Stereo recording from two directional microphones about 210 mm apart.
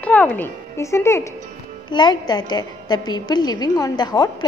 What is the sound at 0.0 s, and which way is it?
A woman's voice, 5° left (ahead or behind).